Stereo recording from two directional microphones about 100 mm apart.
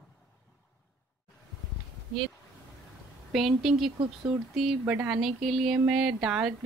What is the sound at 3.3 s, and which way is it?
Speech, centre (ahead or behind).